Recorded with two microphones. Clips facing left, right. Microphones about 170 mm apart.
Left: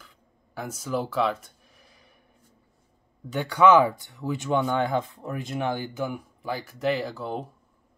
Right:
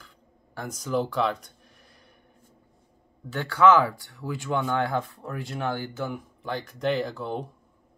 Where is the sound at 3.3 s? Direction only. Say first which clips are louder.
Left 1 dB; 15° left (ahead or behind).